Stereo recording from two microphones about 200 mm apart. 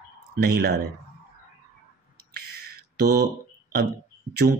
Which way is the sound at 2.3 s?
50° right (ahead or behind).